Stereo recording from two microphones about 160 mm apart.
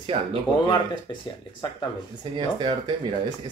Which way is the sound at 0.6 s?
30° left (ahead or behind).